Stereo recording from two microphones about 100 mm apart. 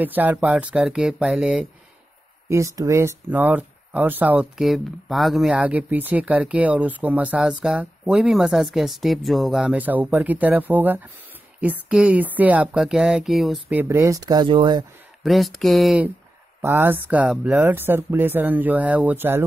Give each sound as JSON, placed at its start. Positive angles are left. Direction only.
{"t": 0.0, "sound": "speech", "side_deg": -15}
{"t": 2.4, "sound": "speech", "side_deg": -30}
{"t": 3.3, "sound": "speech", "side_deg": -15}
{"t": 4.6, "sound": "speech", "side_deg": 0}
{"t": 5.6, "sound": "speech", "side_deg": -15}
{"t": 9.8, "sound": "speech", "side_deg": -15}
{"t": 13.8, "sound": "speech", "side_deg": -30}
{"t": 14.2, "sound": "speech", "side_deg": -45}
{"t": 15.2, "sound": "speech", "side_deg": 0}
{"t": 16.6, "sound": "speech", "side_deg": -20}